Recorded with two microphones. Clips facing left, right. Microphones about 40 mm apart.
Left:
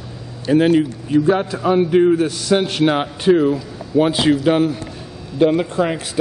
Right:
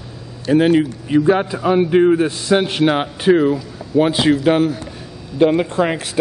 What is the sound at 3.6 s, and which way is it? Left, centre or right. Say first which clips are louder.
A man's voice: right 1 dB; centre.